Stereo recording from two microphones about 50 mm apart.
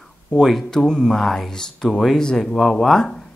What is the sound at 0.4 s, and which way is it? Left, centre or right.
Speech, centre.